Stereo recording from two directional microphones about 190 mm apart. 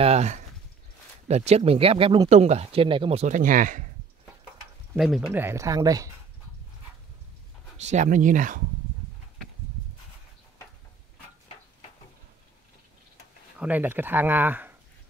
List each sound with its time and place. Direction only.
0.0 s speech: 35° right (ahead or behind)
4.9 s speech: centre (ahead or behind)
5.3 s speech: 10° right (ahead or behind)
7.7 s speech: 40° right (ahead or behind)
13.6 s speech: 10° right (ahead or behind)